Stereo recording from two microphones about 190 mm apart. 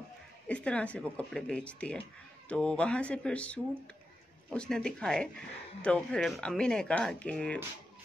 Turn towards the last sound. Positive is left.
turn(degrees=5)  # may be behind; listen again after turning